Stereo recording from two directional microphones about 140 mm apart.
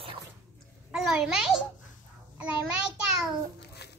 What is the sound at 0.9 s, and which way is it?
Speech, 5° right (ahead or behind).